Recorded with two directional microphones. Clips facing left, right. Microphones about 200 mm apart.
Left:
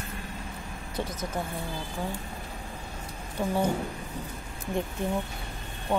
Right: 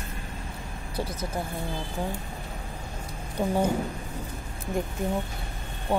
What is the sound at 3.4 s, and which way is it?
Speech, 15° right (ahead or behind).